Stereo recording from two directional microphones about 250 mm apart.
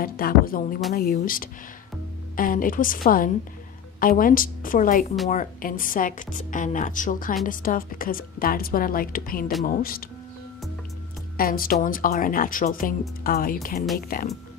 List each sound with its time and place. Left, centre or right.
0.0 s a woman's voice: left
11.3 s a woman's voice: left